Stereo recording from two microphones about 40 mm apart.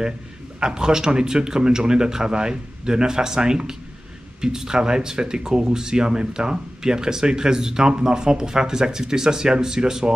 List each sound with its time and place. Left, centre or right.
0.6 s speech: centre